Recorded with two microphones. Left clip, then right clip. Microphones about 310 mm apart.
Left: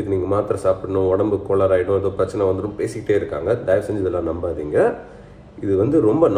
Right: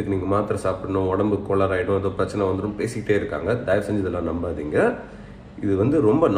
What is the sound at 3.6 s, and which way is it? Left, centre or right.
Speech, centre.